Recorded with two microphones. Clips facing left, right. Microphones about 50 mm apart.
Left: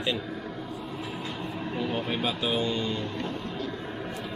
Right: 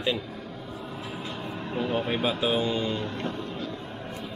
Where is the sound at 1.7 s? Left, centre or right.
Centre.